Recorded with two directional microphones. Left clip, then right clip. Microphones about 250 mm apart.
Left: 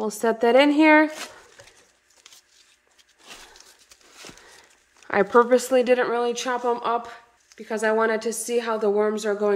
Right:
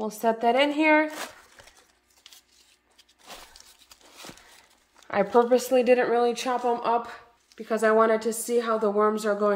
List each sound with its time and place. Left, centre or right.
0.1 s speech: centre
5.1 s speech: centre